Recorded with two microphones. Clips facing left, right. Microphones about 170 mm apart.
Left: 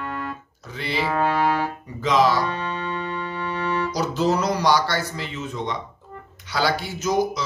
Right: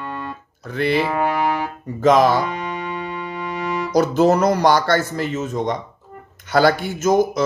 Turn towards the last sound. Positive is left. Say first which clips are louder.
# right 6 dB
turn(degrees=-50)  # may be behind; listen again after turning